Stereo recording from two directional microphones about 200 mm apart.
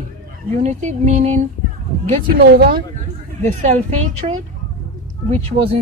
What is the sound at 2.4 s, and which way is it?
Speech, 55° right (ahead or behind).